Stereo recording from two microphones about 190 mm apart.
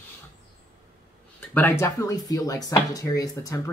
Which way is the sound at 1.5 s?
10° left (ahead or behind).